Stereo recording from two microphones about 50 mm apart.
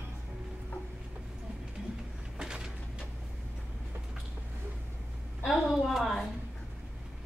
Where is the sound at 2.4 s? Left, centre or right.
Centre.